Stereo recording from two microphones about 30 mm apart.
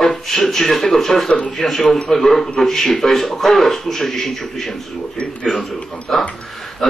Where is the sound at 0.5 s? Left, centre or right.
Centre.